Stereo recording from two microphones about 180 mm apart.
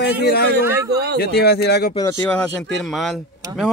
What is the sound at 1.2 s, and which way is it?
Speech, 65° left (ahead or behind).